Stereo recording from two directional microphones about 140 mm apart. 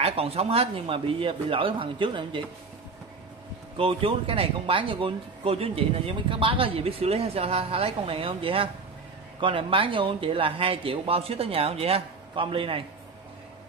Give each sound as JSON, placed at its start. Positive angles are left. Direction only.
{"t": 0.0, "sound": "speech", "side_deg": -45}
{"t": 3.7, "sound": "speech", "side_deg": -40}